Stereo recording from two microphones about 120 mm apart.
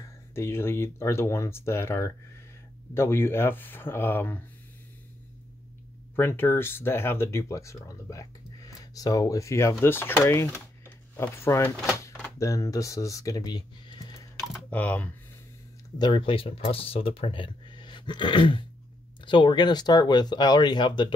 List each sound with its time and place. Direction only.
0.0 s speech: 20° left (ahead or behind)
6.1 s speech: 20° left (ahead or behind); by 14.2 s 35° left (ahead or behind)
14.7 s speech: 15° left (ahead or behind)
16.0 s speech: 45° left (ahead or behind)